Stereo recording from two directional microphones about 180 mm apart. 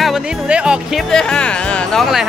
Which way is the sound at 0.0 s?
5° right (ahead or behind).